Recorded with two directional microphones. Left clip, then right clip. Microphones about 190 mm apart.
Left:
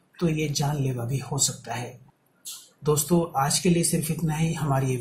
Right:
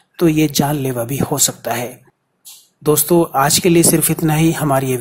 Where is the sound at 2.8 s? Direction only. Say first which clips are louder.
Right 10 dB; 35° right (ahead or behind).